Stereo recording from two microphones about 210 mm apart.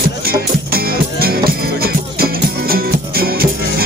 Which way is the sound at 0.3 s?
45° right (ahead or behind).